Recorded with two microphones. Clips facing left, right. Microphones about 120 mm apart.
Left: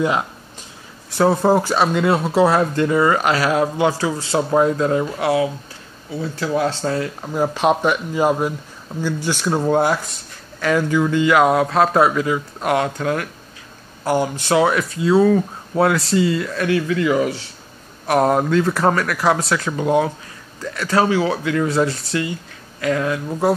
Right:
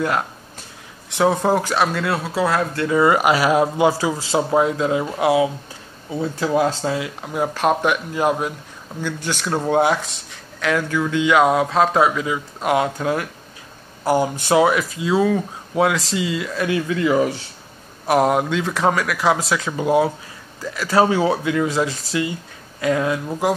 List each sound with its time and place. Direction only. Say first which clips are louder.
1.1 s speech: left 2 dB; centre (ahead or behind); by 2.9 s 20° left (ahead or behind)
3.1 s speech: right 1 dB; 10° right (ahead or behind)
6.8 s speech: left 1 dB; 5° right (ahead or behind)
9.0 s speech: left 4 dB; 10° left (ahead or behind)
12.6 s speech: even; 15° right (ahead or behind)
18.0 s speech: left 1 dB; 10° right (ahead or behind)
20.9 s speech: right 1 dB; 20° right (ahead or behind)
21.6 s speech: left 2 dB; centre (ahead or behind)
22.1 s speech: even; 15° right (ahead or behind)